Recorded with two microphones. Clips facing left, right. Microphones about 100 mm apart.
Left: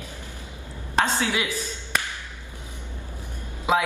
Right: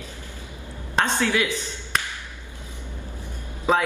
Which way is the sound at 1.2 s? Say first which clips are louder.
Right 3 dB; 15° left (ahead or behind).